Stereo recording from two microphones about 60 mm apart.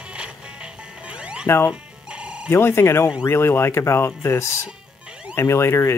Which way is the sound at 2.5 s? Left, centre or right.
Left.